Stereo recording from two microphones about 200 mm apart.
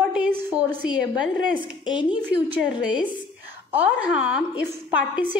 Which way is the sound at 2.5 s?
5° right (ahead or behind).